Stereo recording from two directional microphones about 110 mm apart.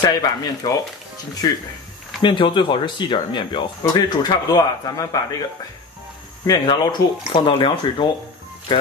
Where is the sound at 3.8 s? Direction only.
35° left (ahead or behind).